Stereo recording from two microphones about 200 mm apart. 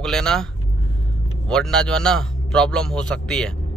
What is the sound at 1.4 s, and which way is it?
Speech, 5° left (ahead or behind).